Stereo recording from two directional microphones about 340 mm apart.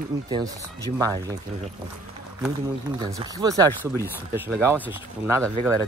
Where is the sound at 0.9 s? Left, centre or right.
Centre.